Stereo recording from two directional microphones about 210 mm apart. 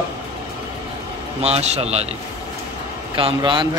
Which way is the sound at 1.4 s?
30° right (ahead or behind).